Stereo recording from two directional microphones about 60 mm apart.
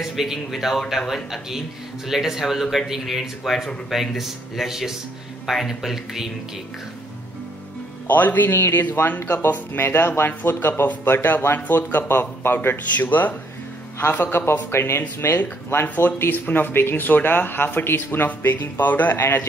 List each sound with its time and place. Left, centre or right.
0.0 s a man's voice: centre
8.1 s speech: left
8.5 s speech: left
9.0 s speech: left